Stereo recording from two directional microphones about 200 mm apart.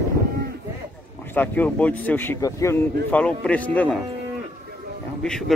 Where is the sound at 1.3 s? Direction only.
10° left (ahead or behind).